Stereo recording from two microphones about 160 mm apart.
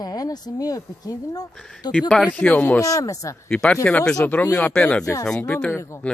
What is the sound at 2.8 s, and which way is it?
Speech, 20° left (ahead or behind).